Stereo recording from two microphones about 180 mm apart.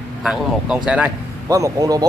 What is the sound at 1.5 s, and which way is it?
Speech, 20° right (ahead or behind).